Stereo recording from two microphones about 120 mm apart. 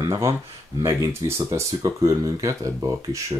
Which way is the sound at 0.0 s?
25° right (ahead or behind).